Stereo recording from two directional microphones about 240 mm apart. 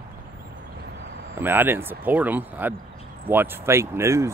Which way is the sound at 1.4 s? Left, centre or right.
Centre.